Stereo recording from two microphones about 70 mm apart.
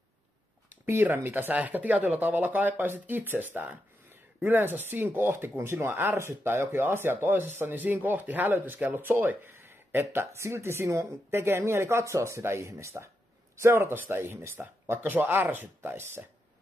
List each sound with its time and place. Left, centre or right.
0.8 s speech: right
11.2 s speech: right